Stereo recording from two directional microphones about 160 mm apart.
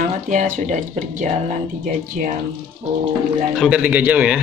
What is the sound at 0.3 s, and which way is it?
Speech, 50° right (ahead or behind).